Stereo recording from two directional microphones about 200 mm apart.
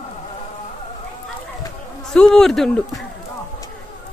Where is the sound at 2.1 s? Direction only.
5° left (ahead or behind).